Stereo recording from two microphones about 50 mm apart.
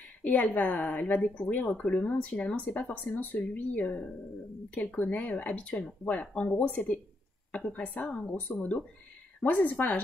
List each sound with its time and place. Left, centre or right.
0.2 s a woman's voice: left